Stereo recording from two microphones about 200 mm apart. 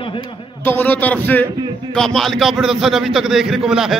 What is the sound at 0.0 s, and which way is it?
Speech, 25° left (ahead or behind).